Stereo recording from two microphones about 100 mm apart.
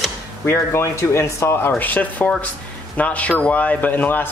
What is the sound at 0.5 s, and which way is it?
Speech, 25° left (ahead or behind).